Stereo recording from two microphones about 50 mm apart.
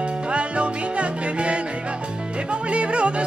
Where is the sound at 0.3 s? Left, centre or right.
Right.